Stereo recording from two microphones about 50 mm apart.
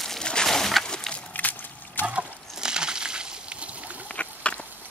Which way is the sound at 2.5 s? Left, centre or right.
Centre.